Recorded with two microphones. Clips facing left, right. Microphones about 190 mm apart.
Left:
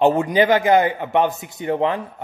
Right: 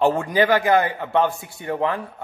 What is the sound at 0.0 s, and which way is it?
A man's voice, 20° left (ahead or behind).